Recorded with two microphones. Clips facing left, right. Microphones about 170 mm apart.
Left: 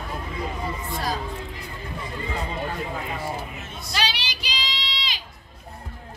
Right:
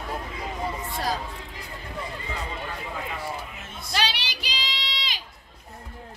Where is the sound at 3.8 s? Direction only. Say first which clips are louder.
Even; 55° right (ahead or behind).